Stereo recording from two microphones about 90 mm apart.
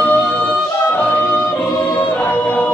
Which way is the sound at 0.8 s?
20° left (ahead or behind).